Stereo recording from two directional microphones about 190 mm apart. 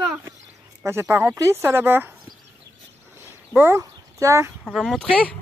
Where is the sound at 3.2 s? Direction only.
10° right (ahead or behind).